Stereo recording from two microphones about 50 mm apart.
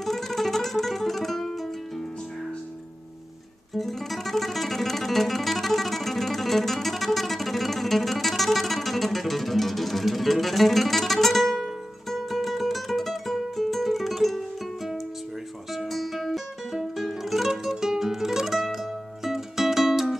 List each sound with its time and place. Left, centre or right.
0.0 s music: centre
3.7 s music: centre
15.7 s music: centre